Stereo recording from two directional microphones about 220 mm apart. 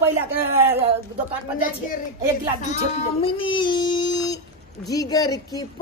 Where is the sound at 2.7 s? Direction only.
25° left (ahead or behind).